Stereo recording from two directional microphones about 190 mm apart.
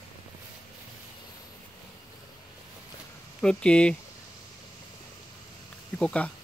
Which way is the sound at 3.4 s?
5° left (ahead or behind).